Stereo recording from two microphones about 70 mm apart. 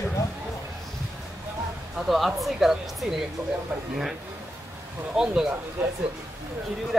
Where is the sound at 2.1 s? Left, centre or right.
Centre.